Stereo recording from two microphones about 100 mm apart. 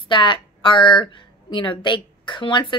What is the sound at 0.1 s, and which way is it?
A woman's voice, 55° left (ahead or behind).